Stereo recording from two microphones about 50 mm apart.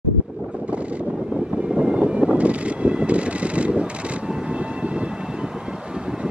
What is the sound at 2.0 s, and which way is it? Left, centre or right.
Vehicle, right.